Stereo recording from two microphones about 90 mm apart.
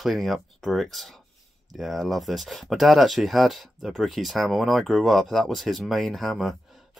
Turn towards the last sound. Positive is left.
turn(degrees=0)  # may be behind; listen again after turning